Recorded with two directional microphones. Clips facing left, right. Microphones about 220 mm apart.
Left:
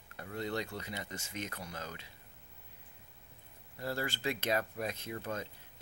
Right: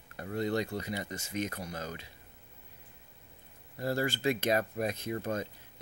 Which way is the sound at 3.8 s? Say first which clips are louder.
Right 6 dB; 40° right (ahead or behind).